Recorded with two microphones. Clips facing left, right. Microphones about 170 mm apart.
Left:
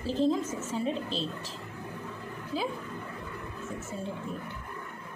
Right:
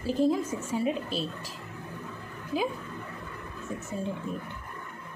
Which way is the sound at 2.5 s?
15° right (ahead or behind).